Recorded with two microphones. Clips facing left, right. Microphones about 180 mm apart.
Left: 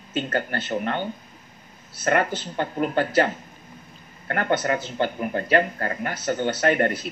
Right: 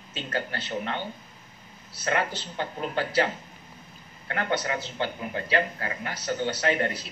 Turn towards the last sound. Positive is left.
turn(degrees=55)  # may be behind; listen again after turning